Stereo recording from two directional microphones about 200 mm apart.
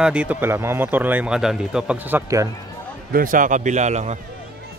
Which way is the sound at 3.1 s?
45° right (ahead or behind).